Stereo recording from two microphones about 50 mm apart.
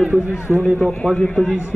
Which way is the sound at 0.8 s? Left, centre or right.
Centre.